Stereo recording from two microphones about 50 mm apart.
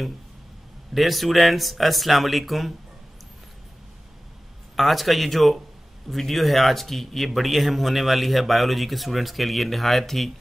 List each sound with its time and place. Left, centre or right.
0.9 s a man's voice: centre
4.7 s a man's voice: centre